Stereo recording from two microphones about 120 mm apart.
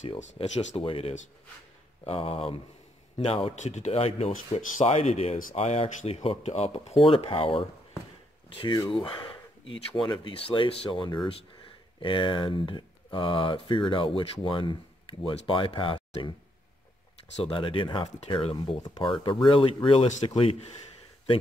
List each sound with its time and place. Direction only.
0.0 s speech: 60° left (ahead or behind)
3.6 s speech: 80° left
3.9 s speech: 50° left (ahead or behind)
4.6 s speech: 75° left (ahead or behind); by 8.7 s 45° left (ahead or behind)
9.0 s a sound: 45° left (ahead or behind)
10.0 s speech: 40° left (ahead or behind)
17.4 s speech: 45° left (ahead or behind)
18.6 s speech: 35° left (ahead or behind)
19.4 s speech: 50° left (ahead or behind)